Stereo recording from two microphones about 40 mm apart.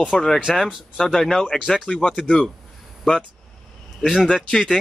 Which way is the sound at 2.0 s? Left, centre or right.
Left.